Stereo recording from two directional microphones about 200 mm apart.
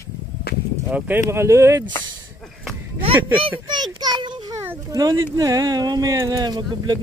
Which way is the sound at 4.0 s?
20° right (ahead or behind).